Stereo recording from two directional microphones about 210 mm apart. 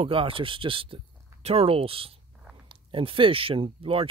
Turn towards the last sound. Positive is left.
turn(degrees=-25)  # may be behind; listen again after turning